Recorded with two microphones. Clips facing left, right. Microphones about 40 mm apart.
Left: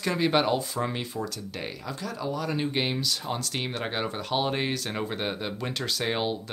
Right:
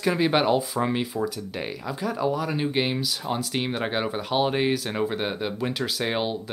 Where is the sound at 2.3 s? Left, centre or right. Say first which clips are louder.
Right 3 dB; centre.